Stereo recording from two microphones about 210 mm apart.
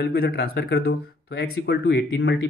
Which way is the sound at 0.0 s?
45° left (ahead or behind).